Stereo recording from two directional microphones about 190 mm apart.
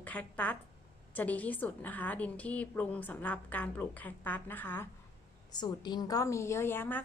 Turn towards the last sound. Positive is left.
turn(degrees=10)  # may be behind; listen again after turning